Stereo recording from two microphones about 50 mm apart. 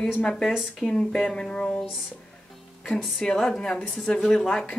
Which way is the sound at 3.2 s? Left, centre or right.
Centre.